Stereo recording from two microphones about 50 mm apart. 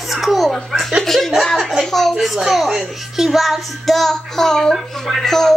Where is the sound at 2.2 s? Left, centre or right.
Centre.